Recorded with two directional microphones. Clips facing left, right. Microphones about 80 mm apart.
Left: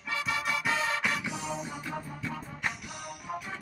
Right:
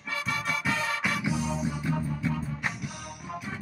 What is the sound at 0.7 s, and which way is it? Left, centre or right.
Music, left.